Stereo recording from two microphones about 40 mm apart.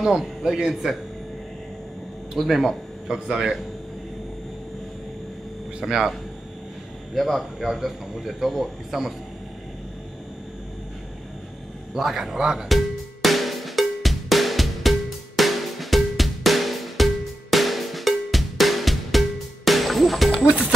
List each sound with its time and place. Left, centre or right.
0.0 s a man's voice: centre
2.3 s a man's voice: centre
3.1 s a man's voice: centre
5.8 s speech: centre
7.2 s a man's voice: centre
11.9 s a man's voice: centre
12.6 s cowbell: centre
20.4 s music: right